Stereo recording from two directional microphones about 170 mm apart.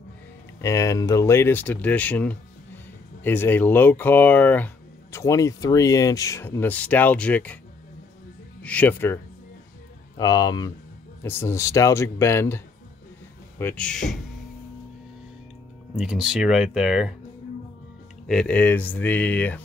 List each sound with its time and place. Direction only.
0.6 s speech: 20° left (ahead or behind)
8.6 s speech: 10° left (ahead or behind)
16.0 s speech: 5° right (ahead or behind)
18.2 s speech: 5° left (ahead or behind)